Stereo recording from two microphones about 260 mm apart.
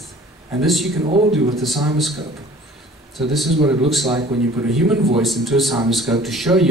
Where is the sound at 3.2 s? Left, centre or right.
Centre.